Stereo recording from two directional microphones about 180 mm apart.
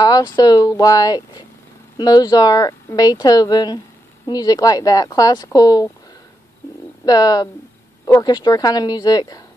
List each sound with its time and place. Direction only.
0.0 s speech: 20° left (ahead or behind)
7.1 s speech: 20° left (ahead or behind)